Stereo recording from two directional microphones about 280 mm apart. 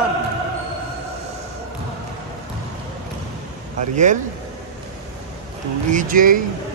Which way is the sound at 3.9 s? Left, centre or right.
Right.